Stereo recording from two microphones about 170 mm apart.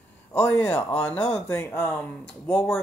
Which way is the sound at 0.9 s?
5° left (ahead or behind).